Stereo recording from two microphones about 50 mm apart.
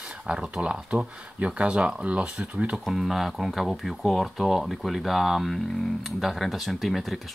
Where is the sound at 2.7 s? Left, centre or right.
Centre.